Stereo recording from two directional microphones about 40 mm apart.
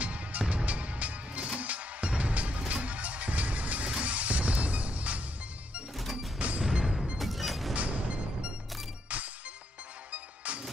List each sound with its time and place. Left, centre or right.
0.0 s music: right
6.3 s music: right
6.6 s music: centre
7.2 s music: centre
7.7 s music: right
9.1 s music: right